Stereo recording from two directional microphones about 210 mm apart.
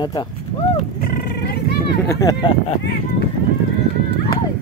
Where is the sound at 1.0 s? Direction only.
50° left (ahead or behind).